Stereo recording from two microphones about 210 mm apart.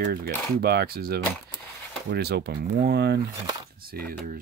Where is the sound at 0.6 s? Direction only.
50° right (ahead or behind).